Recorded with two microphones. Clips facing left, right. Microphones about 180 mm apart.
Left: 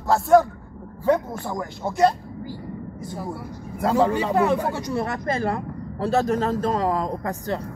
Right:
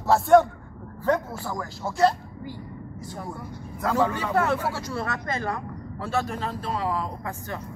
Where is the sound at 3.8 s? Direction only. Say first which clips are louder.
Left 4 dB; 30° left (ahead or behind).